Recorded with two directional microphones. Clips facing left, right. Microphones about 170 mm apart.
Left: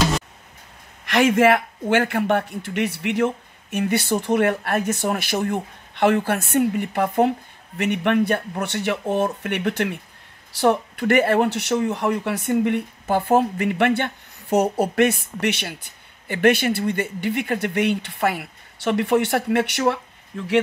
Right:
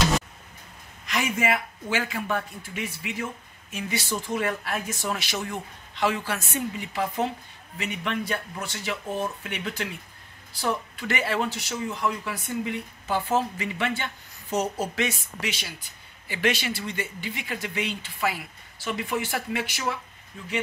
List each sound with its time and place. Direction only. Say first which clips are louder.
1.0 s speech: left 10 dB; 85° left